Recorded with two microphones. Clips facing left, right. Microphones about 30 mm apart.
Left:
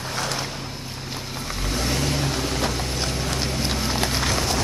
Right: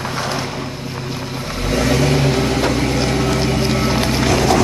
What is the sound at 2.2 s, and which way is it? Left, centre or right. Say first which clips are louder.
Vehicle: right 8 dB; right.